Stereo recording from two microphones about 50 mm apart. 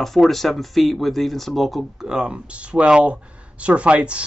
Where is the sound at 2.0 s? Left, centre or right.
Centre.